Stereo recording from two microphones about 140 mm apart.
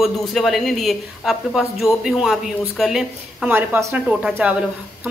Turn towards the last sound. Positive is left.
turn(degrees=-10)  # may be behind; listen again after turning